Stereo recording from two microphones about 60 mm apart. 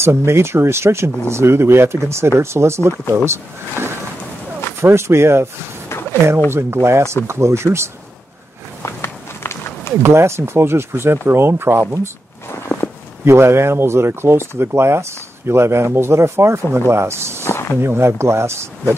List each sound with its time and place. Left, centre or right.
0.0 s speech: right
4.8 s speech: right
5.9 s a sound: left
6.5 s speech: right
8.8 s run: left
10.0 s speech: right
13.2 s speech: right
17.5 s speech: left
17.7 s speech: right